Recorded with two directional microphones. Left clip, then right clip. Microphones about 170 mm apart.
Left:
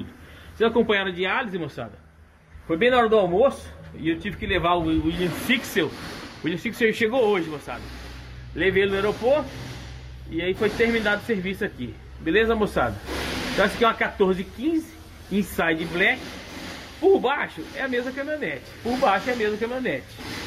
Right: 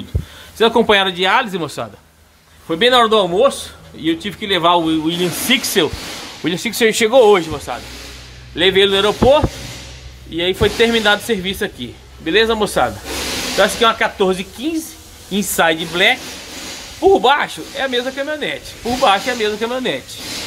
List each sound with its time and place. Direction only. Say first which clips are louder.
0.6 s speech: right 9 dB; 45° right (ahead or behind)
2.7 s speech: right 7 dB; 15° right (ahead or behind); by 7.4 s 40° right (ahead or behind)
7.7 s speech: right 9 dB; 25° right (ahead or behind)